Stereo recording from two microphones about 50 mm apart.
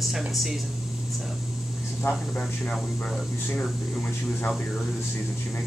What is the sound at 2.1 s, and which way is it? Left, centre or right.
Speech, left.